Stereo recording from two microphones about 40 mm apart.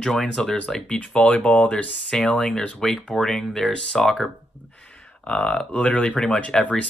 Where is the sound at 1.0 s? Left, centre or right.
Left.